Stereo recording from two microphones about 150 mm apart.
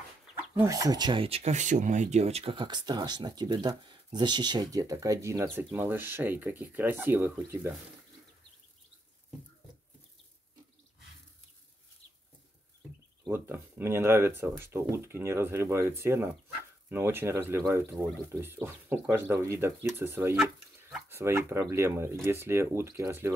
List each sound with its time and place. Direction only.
0.6 s speech: 20° right (ahead or behind)
13.2 s speech: 15° right (ahead or behind)